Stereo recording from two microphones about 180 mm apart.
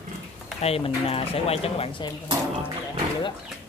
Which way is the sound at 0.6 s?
35° left (ahead or behind).